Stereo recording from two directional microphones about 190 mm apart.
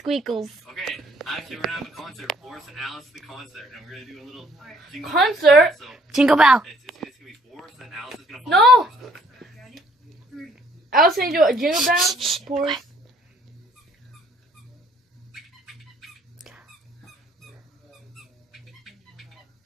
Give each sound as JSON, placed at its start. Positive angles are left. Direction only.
{"t": 0.0, "sound": "a woman's voice", "side_deg": 0}
{"t": 9.4, "sound": "a sound", "side_deg": 0}
{"t": 11.1, "sound": "a woman's voice", "side_deg": -50}
{"t": 11.4, "sound": "a woman's voice", "side_deg": 0}
{"t": 15.6, "sound": "a sound", "side_deg": 0}
{"t": 18.1, "sound": "squawk", "side_deg": 0}